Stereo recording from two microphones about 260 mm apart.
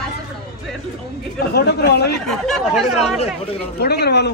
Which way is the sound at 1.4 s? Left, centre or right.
Left.